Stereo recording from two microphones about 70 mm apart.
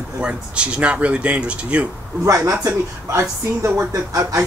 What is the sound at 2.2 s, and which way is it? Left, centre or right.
A man's voice, right.